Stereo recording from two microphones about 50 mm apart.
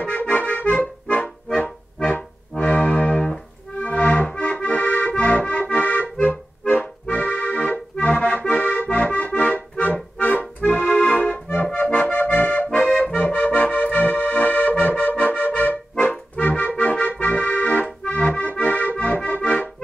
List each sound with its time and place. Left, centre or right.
0.0 s accordion: left
3.1 s music: centre
3.7 s accordion: left